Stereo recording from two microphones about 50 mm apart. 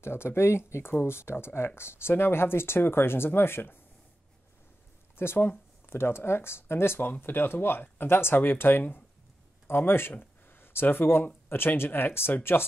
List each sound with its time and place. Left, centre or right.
0.0 s speech: left
5.1 s speech: left